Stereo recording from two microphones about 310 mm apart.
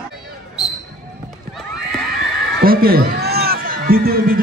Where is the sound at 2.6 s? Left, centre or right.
Right.